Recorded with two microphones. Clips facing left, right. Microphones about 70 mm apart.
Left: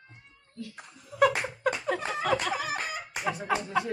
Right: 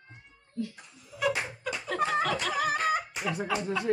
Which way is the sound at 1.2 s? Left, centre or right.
Left.